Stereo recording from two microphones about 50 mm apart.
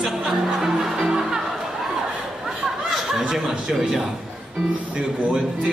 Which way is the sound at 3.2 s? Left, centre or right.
Centre.